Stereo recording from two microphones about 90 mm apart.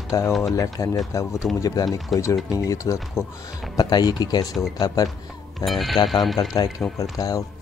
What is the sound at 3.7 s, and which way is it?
Speech, 50° left (ahead or behind).